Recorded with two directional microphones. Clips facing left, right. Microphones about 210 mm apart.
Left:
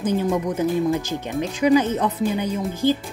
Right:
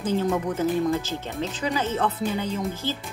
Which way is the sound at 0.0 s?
15° left (ahead or behind).